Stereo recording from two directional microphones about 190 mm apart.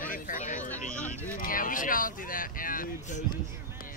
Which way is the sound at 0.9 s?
5° left (ahead or behind).